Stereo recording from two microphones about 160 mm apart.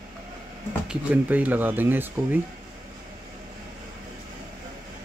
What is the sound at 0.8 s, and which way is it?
Speech, 10° right (ahead or behind).